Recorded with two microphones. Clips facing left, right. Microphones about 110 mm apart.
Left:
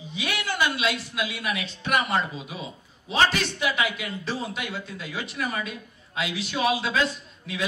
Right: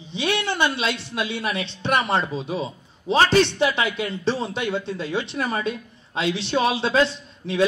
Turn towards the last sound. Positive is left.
turn(degrees=-30)  # may be behind; listen again after turning